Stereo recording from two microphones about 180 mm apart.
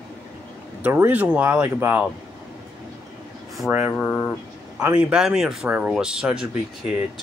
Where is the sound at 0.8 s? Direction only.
10° right (ahead or behind).